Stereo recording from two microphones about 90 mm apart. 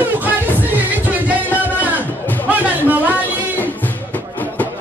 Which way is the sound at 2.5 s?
20° right (ahead or behind).